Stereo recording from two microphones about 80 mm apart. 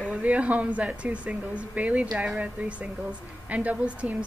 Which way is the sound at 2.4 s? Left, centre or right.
Centre.